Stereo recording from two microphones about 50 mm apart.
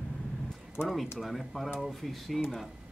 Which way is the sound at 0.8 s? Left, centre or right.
Left.